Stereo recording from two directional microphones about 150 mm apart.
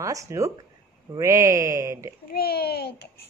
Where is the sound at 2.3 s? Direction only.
90° left.